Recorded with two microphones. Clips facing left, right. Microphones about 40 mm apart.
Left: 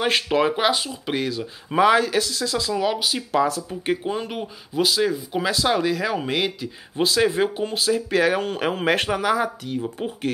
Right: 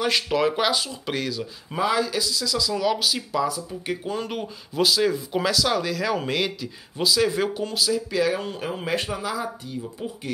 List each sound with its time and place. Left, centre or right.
0.0 s speech: left
1.8 s speech: left
2.8 s speech: left
4.3 s speech: centre
5.5 s speech: left
7.0 s speech: left